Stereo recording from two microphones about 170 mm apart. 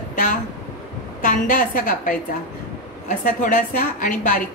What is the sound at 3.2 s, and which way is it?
Speech, 55° left (ahead or behind).